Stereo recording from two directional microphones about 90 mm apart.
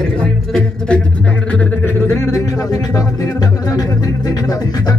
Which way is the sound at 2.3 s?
45° left (ahead or behind).